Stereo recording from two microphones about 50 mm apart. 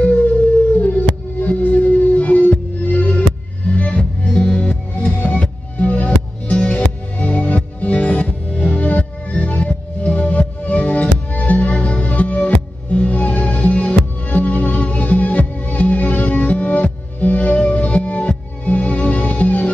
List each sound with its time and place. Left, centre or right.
0.0 s howl: left
0.7 s music: left